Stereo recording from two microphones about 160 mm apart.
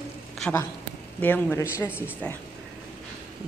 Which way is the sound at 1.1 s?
10° left (ahead or behind).